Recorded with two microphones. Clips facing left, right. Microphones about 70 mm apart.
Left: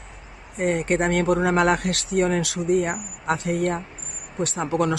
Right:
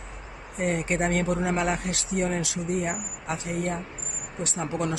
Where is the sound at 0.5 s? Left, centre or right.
Left.